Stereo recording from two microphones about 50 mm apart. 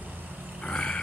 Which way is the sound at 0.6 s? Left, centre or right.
Left.